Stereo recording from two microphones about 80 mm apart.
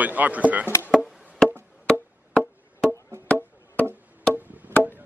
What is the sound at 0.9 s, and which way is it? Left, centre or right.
Wood block, centre.